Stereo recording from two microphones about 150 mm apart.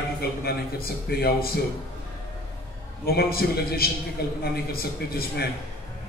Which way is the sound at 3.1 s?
90° left.